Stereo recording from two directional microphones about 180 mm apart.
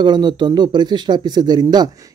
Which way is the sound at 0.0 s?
25° right (ahead or behind).